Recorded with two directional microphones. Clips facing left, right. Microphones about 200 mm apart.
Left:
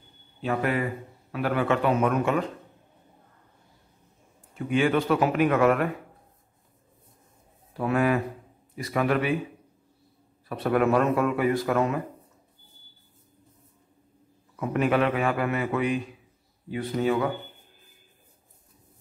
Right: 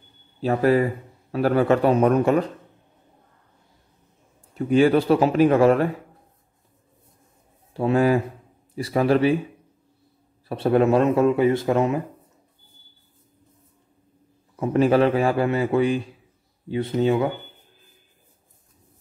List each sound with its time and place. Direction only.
0.4 s a man's voice: 35° right (ahead or behind)
4.6 s a man's voice: 35° right (ahead or behind)
7.7 s a man's voice: 30° right (ahead or behind)
10.5 s speech: 30° right (ahead or behind)
14.6 s a man's voice: 30° right (ahead or behind)